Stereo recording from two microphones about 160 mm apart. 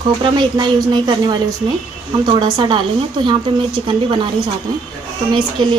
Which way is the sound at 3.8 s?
30° right (ahead or behind).